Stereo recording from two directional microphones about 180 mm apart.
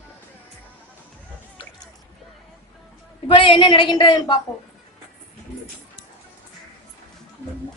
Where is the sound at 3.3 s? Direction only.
30° left (ahead or behind).